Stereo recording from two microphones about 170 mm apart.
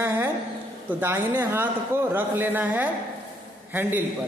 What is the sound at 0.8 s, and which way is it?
A man's voice, 10° right (ahead or behind).